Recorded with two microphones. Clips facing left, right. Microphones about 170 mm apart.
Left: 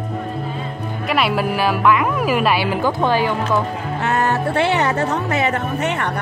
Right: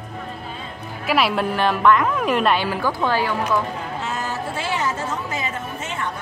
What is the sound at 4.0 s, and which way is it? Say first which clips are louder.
Speech: left 11 dB; 65° left (ahead or behind).